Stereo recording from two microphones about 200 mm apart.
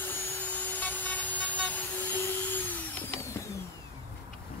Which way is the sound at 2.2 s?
10° left (ahead or behind).